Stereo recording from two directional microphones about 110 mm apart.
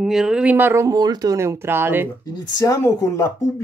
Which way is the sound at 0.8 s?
40° right (ahead or behind).